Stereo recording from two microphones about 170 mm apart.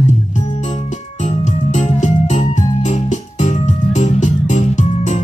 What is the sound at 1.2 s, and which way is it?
Music, 45° left (ahead or behind).